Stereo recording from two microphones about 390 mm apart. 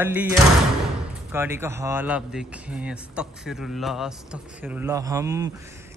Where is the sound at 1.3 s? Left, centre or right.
Centre.